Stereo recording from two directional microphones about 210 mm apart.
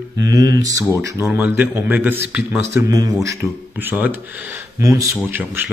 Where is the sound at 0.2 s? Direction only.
15° right (ahead or behind).